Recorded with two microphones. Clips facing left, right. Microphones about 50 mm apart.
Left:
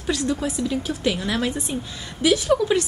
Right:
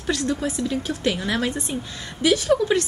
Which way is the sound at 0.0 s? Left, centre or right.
Centre.